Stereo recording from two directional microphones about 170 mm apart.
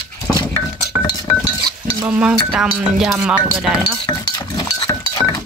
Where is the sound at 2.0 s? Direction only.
5° right (ahead or behind).